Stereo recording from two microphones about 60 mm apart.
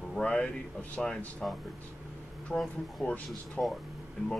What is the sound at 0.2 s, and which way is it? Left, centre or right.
Speech, centre.